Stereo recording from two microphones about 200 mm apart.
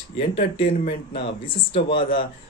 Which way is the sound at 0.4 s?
30° left (ahead or behind).